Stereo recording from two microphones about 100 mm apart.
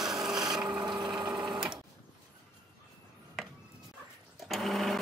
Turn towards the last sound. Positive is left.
turn(degrees=0)  # may be behind; listen again after turning